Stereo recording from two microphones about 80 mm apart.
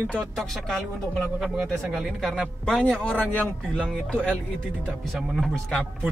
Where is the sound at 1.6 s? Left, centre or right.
Centre.